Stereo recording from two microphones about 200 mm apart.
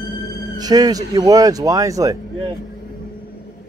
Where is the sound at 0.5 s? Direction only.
20° right (ahead or behind).